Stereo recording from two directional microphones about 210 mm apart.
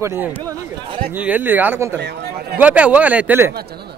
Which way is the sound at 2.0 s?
50° right (ahead or behind).